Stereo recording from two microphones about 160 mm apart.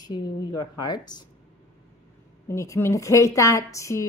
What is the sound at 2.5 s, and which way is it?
A woman's voice, 15° left (ahead or behind).